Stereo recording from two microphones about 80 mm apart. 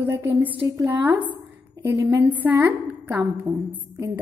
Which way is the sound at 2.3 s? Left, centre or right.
Right.